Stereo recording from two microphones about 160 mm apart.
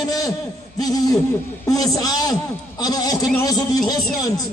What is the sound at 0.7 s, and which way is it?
A man's voice, 25° left (ahead or behind).